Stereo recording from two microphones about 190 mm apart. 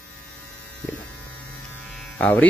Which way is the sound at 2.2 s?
10° left (ahead or behind).